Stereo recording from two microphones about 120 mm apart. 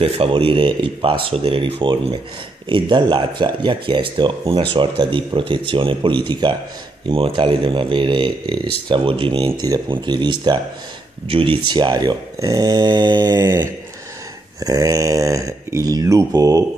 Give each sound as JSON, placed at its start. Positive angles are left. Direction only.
{"t": 0.0, "sound": "speech", "side_deg": -50}
{"t": 14.6, "sound": "speech", "side_deg": -30}